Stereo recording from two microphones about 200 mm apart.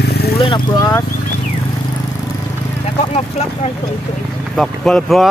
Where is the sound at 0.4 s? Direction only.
20° left (ahead or behind).